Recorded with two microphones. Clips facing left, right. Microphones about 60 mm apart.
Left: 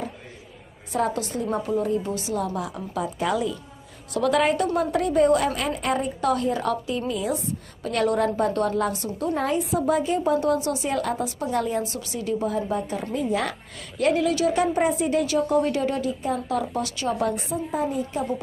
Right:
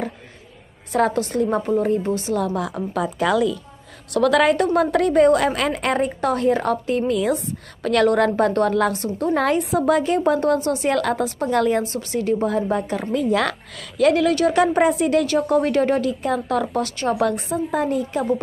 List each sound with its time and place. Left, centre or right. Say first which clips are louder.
1.1 s a woman's voice: right 6 dB; right
1.7 s a woman's voice: right 5 dB; right
3.2 s a woman's voice: right 6 dB; right
4.1 s a woman's voice: right 5 dB; right
4.7 s a woman's voice: right 5 dB; right
6.2 s a woman's voice: right 3 dB; right
8.9 s a woman's voice: right 5 dB; right
9.3 s a woman's voice: right 5 dB; right
10.9 s a woman's voice: right 7 dB; right
14.3 s a woman's voice: right 4 dB; right
14.6 s speech: right 5 dB; right
15.2 s a woman's voice: right 3 dB; right
17.1 s a woman's voice: right 4 dB; right